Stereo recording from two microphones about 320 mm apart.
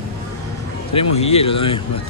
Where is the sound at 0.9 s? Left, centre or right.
Centre.